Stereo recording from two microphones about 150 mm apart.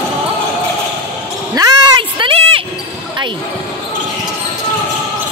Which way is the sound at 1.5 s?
30° right (ahead or behind).